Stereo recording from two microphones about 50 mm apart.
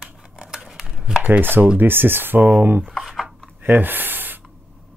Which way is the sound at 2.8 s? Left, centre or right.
Centre.